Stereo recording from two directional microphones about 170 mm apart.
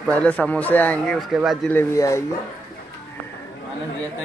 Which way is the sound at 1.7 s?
15° left (ahead or behind).